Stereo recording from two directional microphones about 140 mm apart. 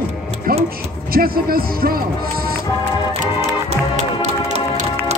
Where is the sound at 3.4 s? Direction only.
50° right (ahead or behind).